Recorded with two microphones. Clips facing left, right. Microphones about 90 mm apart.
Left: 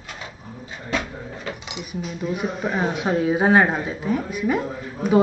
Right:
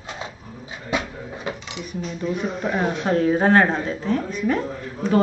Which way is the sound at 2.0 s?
5° left (ahead or behind).